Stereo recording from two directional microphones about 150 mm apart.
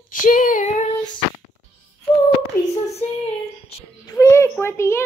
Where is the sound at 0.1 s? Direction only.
65° left (ahead or behind).